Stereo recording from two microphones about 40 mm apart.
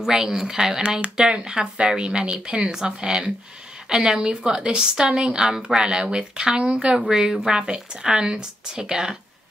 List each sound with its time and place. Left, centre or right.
0.1 s a woman's voice: centre